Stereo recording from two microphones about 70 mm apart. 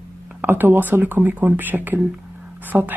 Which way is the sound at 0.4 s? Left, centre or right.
Right.